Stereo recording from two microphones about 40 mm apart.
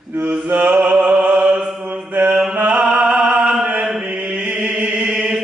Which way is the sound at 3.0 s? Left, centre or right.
Right.